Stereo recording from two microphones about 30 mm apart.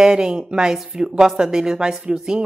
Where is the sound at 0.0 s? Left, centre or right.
Right.